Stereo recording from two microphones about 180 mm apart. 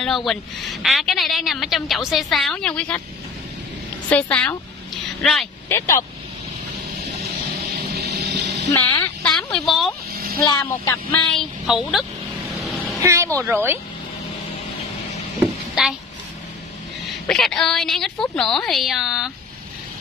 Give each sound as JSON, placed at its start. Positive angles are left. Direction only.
{"t": 0.0, "sound": "a woman's voice", "side_deg": 0}
{"t": 4.1, "sound": "a woman's voice", "side_deg": 5}
{"t": 5.7, "sound": "speech", "side_deg": 15}
{"t": 8.0, "sound": "music", "side_deg": -65}
{"t": 8.7, "sound": "speech", "side_deg": 15}
{"t": 9.3, "sound": "speech", "side_deg": 5}
{"t": 10.1, "sound": "vehicle", "side_deg": -55}
{"t": 10.4, "sound": "speech", "side_deg": 20}
{"t": 11.3, "sound": "a woman's voice", "side_deg": 0}
{"t": 12.5, "sound": "a sound", "side_deg": 0}
{"t": 13.0, "sound": "a woman's voice", "side_deg": -15}
{"t": 15.8, "sound": "a woman's voice", "side_deg": -5}
{"t": 17.3, "sound": "a woman's voice", "side_deg": 0}